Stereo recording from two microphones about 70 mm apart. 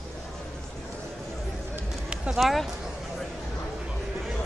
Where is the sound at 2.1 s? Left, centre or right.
Centre.